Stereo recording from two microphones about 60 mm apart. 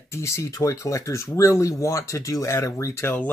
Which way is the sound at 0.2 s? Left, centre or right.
Left.